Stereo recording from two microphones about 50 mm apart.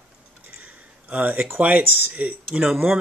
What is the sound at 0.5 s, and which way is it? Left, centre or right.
Speech, right.